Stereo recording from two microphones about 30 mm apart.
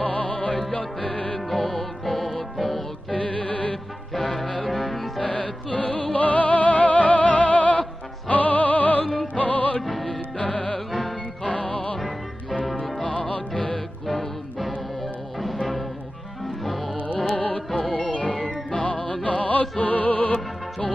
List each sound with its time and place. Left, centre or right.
0.0 s music: left
1.5 s music: centre
3.1 s music: left
4.1 s music: centre
5.2 s music: left
6.1 s music: left
10.0 s music: left
14.0 s music: centre
17.9 s organ: left
18.7 s music: left